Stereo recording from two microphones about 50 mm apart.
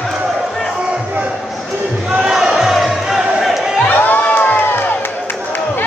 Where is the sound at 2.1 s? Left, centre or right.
Centre.